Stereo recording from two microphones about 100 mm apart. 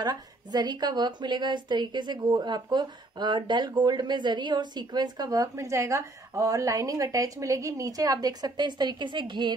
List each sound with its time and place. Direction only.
0.0 s a woman's voice: 45° right (ahead or behind)